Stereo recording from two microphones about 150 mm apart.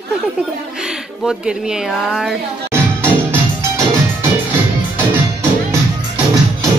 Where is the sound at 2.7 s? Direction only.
15° right (ahead or behind).